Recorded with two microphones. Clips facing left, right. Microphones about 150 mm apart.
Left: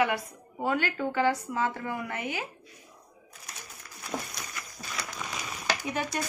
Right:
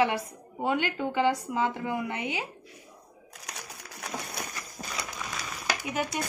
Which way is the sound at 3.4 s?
70° right (ahead or behind).